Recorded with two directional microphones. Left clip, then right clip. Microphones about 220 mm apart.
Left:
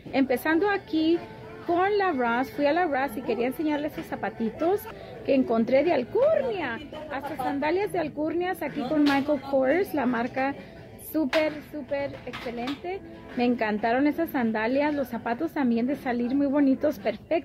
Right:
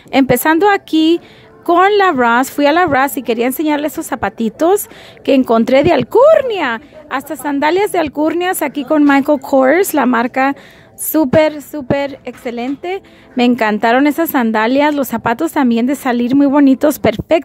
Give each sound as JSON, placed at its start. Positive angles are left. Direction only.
{"t": 0.1, "sound": "speech", "side_deg": -40}